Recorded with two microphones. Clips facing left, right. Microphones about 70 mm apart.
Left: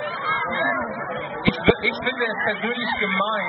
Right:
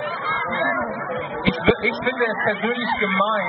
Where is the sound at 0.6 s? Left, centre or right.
Right.